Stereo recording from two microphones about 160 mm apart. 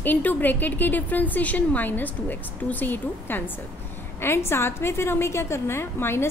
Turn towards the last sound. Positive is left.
turn(degrees=15)  # may be behind; listen again after turning